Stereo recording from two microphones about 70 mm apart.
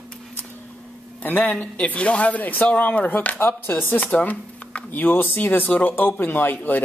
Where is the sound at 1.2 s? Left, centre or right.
Left.